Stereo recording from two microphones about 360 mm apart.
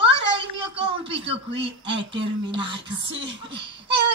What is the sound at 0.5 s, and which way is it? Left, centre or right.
Speech, centre.